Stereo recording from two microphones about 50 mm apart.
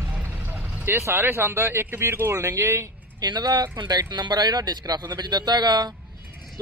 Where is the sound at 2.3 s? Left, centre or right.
Right.